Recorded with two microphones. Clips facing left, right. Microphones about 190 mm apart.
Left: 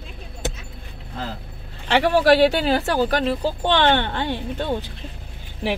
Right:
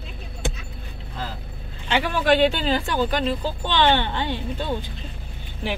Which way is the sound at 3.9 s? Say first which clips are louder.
Left 1 dB; 55° left (ahead or behind).